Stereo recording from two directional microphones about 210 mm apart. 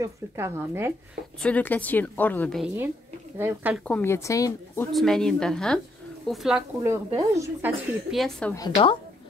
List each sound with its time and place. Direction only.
0.0 s speech: 10° right (ahead or behind)
1.4 s a woman's voice: 5° left (ahead or behind)
2.6 s speech: 10° right (ahead or behind)
3.8 s a woman's voice: 10° left (ahead or behind)
4.9 s a woman's voice: centre (ahead or behind); by 7.7 s 15° right (ahead or behind)
8.1 s a woman's voice: 5° left (ahead or behind)
8.5 s a woman's voice: 20° left (ahead or behind)